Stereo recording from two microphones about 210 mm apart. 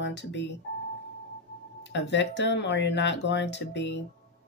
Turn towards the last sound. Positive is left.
turn(degrees=55)  # may be behind; listen again after turning